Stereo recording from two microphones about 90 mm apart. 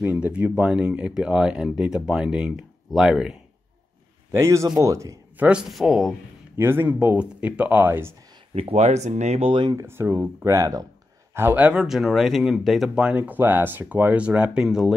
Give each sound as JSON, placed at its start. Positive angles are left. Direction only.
{"t": 0.0, "sound": "speech", "side_deg": -15}
{"t": 4.4, "sound": "speech", "side_deg": -35}
{"t": 5.4, "sound": "speech", "side_deg": -10}
{"t": 6.5, "sound": "a man's voice", "side_deg": -25}
{"t": 7.2, "sound": "speech", "side_deg": -15}
{"t": 9.4, "sound": "speech", "side_deg": -70}
{"t": 9.8, "sound": "a man's voice", "side_deg": -25}
{"t": 10.4, "sound": "speech", "side_deg": -40}
{"t": 11.3, "sound": "speech", "side_deg": -20}
{"t": 13.2, "sound": "speech", "side_deg": -20}